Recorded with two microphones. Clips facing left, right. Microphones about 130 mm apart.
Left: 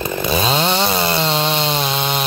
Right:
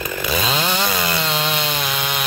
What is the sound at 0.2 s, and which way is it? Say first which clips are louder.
Chainsaw: left 4 dB; 30° left (ahead or behind).